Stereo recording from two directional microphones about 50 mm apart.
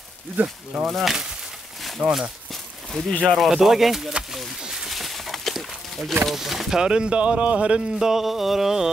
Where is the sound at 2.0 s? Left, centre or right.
Right.